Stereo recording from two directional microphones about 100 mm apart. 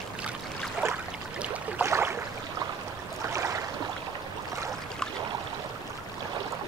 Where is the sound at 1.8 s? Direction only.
25° right (ahead or behind).